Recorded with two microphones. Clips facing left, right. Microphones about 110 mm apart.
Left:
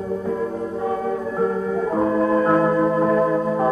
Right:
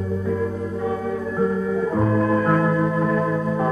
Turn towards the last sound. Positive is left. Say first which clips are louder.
# left 3 dB
turn(degrees=30)  # may be behind; listen again after turning